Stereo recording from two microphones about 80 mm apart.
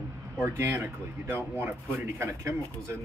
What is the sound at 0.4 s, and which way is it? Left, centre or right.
Speech, right.